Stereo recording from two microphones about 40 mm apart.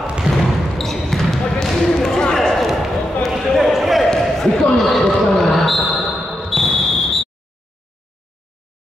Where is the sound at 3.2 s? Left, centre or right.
Centre.